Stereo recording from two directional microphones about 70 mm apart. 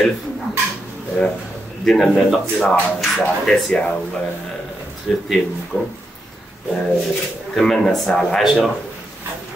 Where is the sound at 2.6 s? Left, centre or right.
Centre.